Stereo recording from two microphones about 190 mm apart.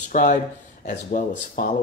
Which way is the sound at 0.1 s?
45° left (ahead or behind).